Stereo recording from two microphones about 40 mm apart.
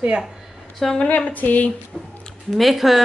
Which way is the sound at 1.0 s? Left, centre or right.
Left.